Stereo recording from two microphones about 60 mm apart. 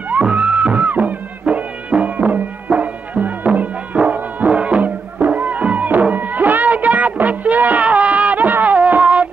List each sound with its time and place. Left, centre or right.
0.1 s music: right